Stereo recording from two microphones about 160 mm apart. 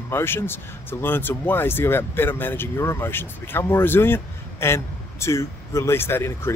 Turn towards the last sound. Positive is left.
turn(degrees=15)  # may be behind; listen again after turning